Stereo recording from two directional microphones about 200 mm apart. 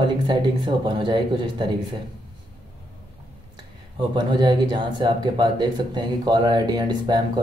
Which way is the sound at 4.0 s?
20° right (ahead or behind).